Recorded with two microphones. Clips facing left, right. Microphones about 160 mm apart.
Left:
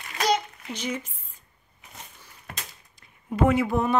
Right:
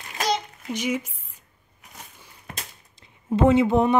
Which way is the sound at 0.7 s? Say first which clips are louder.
Right 5 dB; 10° right (ahead or behind).